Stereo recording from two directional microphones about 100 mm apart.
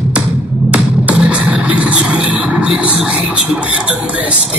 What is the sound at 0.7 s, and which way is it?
Music, 10° right (ahead or behind).